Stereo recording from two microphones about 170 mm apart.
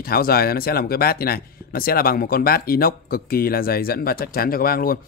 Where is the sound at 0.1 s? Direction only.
60° left (ahead or behind).